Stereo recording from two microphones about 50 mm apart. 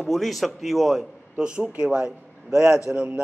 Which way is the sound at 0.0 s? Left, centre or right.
Centre.